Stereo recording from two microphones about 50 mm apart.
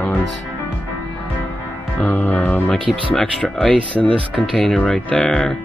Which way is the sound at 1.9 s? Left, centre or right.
Left.